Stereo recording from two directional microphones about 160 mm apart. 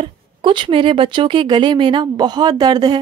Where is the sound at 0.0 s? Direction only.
30° right (ahead or behind).